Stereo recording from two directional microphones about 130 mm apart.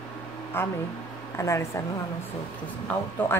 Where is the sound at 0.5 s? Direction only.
15° left (ahead or behind).